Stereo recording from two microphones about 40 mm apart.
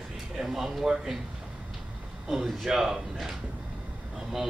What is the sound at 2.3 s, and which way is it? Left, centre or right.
Speech, centre.